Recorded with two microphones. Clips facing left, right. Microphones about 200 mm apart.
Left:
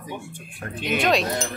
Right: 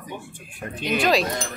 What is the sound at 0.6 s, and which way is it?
Speech, centre (ahead or behind).